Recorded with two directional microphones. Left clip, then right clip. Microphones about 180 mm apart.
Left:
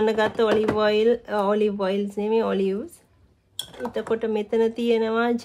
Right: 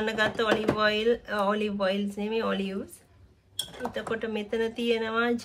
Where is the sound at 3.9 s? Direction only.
45° left (ahead or behind).